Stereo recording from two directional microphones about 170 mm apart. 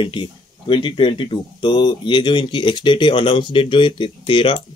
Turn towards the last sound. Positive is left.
turn(degrees=30)  # may be behind; listen again after turning